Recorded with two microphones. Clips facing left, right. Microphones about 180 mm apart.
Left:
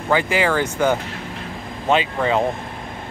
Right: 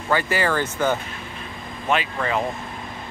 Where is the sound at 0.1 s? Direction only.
15° left (ahead or behind).